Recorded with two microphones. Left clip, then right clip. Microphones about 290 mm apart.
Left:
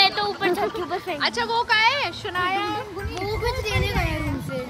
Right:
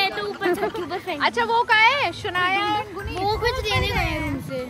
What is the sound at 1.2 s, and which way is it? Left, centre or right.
Speech, right.